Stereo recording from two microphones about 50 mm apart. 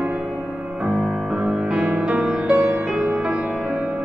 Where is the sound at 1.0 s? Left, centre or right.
Centre.